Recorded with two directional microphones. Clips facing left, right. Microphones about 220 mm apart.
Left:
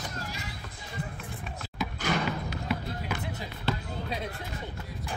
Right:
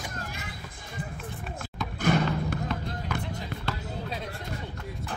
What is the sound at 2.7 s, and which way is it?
Music, 10° left (ahead or behind).